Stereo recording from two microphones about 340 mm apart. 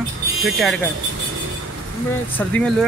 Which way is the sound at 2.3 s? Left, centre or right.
Centre.